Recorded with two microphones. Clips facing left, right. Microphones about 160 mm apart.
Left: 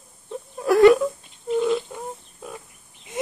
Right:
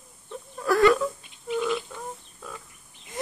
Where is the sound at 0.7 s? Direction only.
20° left (ahead or behind).